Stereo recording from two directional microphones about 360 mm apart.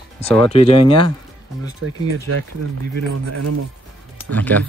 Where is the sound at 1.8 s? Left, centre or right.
Right.